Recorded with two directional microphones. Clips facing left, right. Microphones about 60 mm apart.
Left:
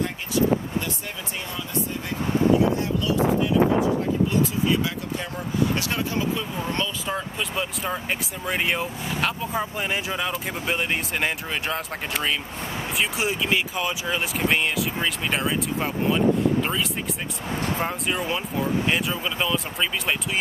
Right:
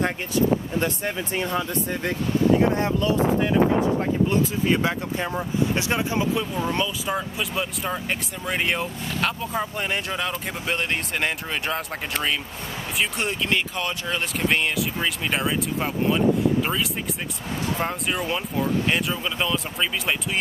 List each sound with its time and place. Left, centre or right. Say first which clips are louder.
0.7 s speech: right 5 dB; right
2.8 s speech: right 2 dB; right; by 16.2 s centre
17.7 s speech: even; centre